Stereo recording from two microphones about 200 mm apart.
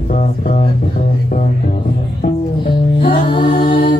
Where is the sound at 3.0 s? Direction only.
25° left (ahead or behind).